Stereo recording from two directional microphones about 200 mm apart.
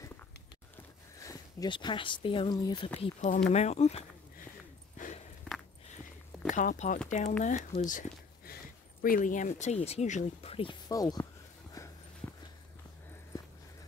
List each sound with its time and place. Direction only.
1.2 s speech: 20° left (ahead or behind)
3.0 s speech: 40° left (ahead or behind)
4.9 s a sound: 40° left (ahead or behind)
5.5 s a sound: 5° left (ahead or behind)
6.5 s speech: 40° left (ahead or behind)
10.9 s speech: 20° left (ahead or behind)